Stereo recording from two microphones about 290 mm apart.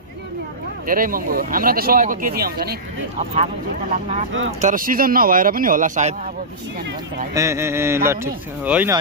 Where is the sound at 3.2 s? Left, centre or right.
Right.